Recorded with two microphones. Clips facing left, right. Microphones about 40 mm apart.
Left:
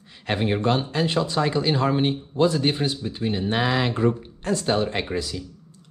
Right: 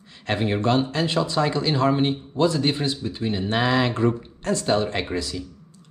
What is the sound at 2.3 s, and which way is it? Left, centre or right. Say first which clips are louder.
Speech: left 1 dB; centre.